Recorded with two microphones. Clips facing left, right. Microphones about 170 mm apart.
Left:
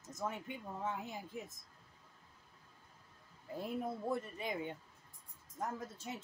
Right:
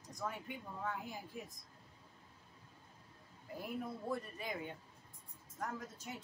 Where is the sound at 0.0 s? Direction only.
20° left (ahead or behind).